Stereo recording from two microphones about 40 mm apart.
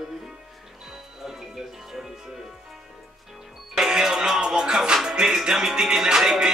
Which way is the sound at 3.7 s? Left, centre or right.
Centre.